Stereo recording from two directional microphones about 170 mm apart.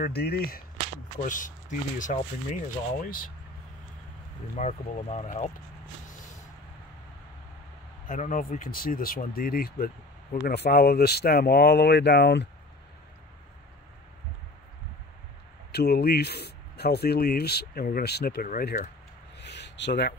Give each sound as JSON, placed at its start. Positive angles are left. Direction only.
{"t": 0.0, "sound": "speech", "side_deg": 65}
{"t": 4.6, "sound": "speech", "side_deg": 40}
{"t": 6.0, "sound": "vehicle", "side_deg": 50}
{"t": 8.1, "sound": "speech", "side_deg": 50}
{"t": 15.7, "sound": "speech", "side_deg": 70}
{"t": 19.3, "sound": "a sound", "side_deg": 85}